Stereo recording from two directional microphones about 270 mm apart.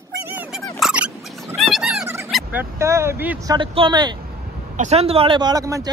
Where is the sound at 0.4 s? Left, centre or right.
Centre.